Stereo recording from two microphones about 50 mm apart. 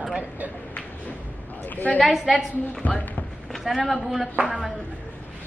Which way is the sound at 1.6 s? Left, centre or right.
Left.